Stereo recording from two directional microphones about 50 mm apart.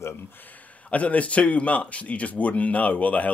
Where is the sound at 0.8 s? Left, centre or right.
Left.